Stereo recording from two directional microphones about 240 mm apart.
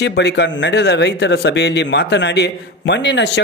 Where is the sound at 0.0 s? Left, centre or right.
Left.